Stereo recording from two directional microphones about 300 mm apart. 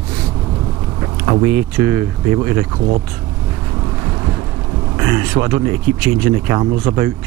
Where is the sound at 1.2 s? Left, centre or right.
Centre.